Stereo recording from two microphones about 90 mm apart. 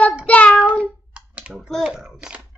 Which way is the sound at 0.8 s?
15° right (ahead or behind).